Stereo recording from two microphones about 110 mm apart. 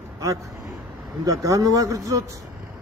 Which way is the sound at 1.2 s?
30° right (ahead or behind).